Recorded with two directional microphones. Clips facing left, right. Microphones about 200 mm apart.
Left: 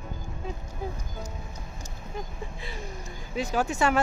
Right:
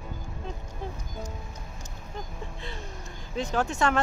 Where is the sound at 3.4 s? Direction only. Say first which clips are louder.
Left 1 dB; 10° left (ahead or behind).